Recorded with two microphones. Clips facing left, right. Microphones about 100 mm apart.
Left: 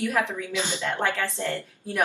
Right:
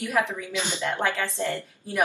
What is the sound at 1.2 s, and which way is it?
Speech, 20° right (ahead or behind).